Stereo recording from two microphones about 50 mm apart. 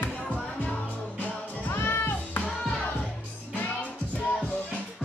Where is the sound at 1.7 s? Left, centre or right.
Left.